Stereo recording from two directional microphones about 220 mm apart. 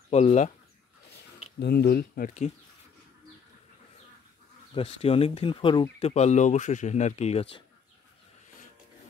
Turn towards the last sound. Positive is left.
turn(degrees=25)  # may be behind; listen again after turning